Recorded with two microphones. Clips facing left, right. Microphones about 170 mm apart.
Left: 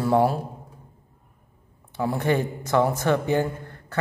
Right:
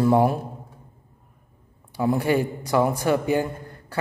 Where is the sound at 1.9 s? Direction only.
15° right (ahead or behind).